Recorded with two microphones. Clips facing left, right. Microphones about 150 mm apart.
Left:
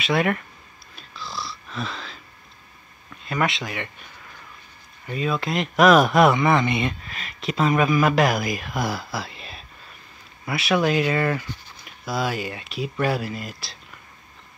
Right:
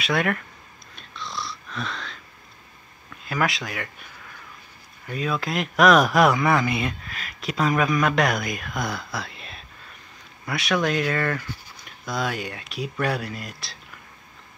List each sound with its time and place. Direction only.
0.0 s speech: centre (ahead or behind)
0.9 s wheeze: 5° left (ahead or behind)
3.3 s speech: centre (ahead or behind)
5.0 s speech: centre (ahead or behind)